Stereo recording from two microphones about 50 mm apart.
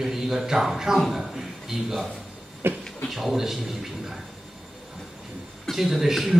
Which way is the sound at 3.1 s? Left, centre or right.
Centre.